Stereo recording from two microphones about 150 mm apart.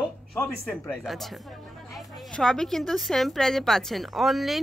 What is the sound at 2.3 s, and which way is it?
A woman's voice, 5° left (ahead or behind).